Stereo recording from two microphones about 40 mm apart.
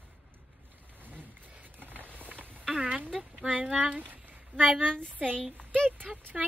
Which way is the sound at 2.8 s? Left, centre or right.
Right.